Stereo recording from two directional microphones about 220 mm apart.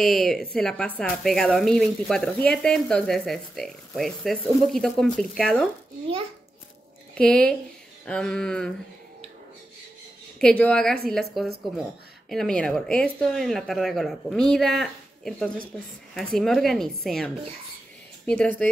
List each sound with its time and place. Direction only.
0.0 s speech: centre (ahead or behind)
7.2 s speech: 5° left (ahead or behind)
10.4 s speech: 5° left (ahead or behind)
18.4 s speech: 5° left (ahead or behind)